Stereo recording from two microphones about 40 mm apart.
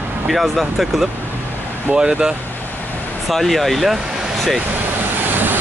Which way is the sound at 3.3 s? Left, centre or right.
Centre.